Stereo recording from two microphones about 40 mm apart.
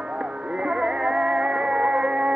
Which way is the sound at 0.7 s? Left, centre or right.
Centre.